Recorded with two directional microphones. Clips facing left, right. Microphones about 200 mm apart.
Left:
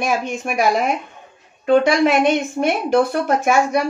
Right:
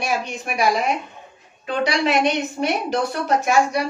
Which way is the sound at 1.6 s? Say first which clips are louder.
Left 7 dB; 50° left (ahead or behind).